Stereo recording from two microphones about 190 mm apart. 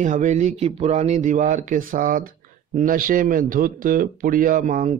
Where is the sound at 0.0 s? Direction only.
40° right (ahead or behind).